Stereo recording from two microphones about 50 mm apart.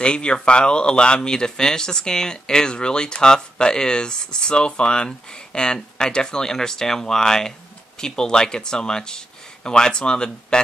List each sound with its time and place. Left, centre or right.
0.0 s speech: centre